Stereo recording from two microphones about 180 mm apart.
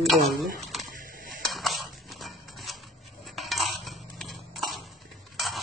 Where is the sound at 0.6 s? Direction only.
Centre (ahead or behind).